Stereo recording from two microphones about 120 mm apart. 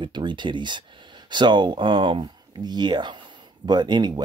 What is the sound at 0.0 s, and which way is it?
Speech, 40° right (ahead or behind).